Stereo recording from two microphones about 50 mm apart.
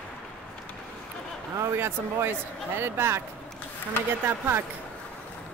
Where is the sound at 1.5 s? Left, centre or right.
Right.